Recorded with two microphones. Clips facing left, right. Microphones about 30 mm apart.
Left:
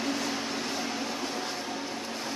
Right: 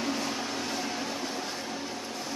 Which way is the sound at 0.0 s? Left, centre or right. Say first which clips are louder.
Even; centre.